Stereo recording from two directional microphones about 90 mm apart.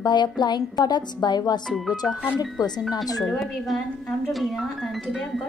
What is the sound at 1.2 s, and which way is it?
Speech, 50° left (ahead or behind).